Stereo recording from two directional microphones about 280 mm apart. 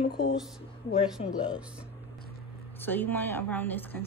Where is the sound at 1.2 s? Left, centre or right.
Centre.